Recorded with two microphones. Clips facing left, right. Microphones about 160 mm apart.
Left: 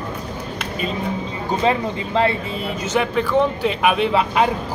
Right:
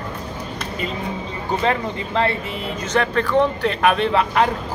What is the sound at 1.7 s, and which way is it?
Speech, 15° left (ahead or behind).